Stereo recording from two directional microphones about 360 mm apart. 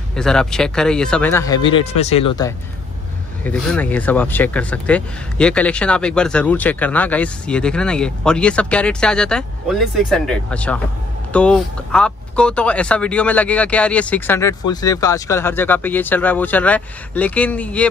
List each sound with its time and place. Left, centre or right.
0.1 s speech: centre